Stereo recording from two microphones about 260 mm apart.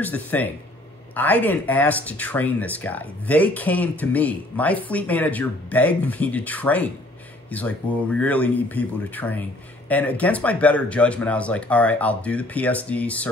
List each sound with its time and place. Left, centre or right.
0.0 s speech: centre